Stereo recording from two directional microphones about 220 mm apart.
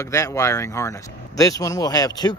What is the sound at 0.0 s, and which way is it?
Speech, 15° left (ahead or behind).